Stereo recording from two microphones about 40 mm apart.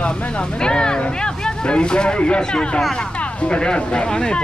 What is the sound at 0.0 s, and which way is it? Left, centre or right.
Speech, left.